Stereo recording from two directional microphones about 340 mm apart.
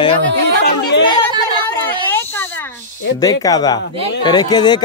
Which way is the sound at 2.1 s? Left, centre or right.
Centre.